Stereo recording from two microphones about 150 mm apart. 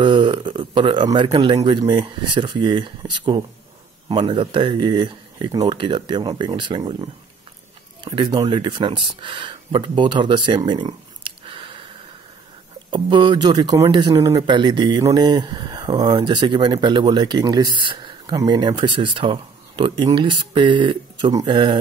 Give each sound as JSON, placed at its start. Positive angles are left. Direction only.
{"t": 0.0, "sound": "speech", "side_deg": -35}
{"t": 12.9, "sound": "speech", "side_deg": -30}